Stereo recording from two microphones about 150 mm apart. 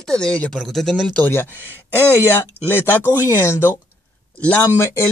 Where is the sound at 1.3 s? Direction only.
15° left (ahead or behind).